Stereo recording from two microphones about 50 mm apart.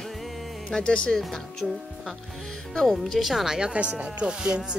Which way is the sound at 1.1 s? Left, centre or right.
Centre.